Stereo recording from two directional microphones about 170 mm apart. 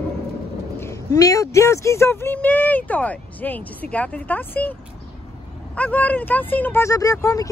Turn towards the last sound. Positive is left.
turn(degrees=20)  # may be behind; listen again after turning